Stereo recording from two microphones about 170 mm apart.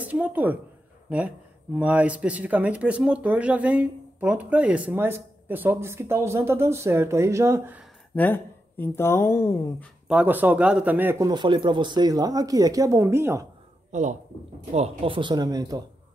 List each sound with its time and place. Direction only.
0.0 s speech: 10° right (ahead or behind)
1.8 s speech: 10° right (ahead or behind)
8.2 s speech: 10° left (ahead or behind)
10.0 s speech: 10° right (ahead or behind)
11.2 s speech: 25° right (ahead or behind)
13.9 s speech: 45° right (ahead or behind); by 15.8 s 20° right (ahead or behind)